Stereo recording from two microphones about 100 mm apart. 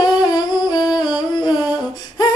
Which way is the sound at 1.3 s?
45° left (ahead or behind).